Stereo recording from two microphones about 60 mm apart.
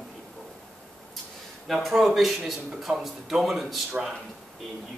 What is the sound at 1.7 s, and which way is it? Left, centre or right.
A man's voice, centre.